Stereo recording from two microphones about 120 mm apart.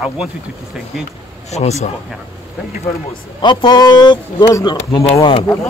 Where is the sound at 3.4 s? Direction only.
40° left (ahead or behind).